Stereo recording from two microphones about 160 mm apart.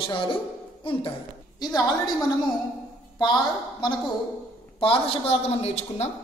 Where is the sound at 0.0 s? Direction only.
35° left (ahead or behind).